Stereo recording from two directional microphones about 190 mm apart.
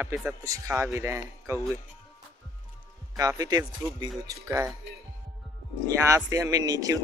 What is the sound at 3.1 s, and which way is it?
Speech, 20° right (ahead or behind).